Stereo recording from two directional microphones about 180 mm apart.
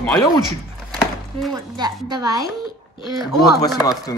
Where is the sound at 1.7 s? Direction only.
25° right (ahead or behind).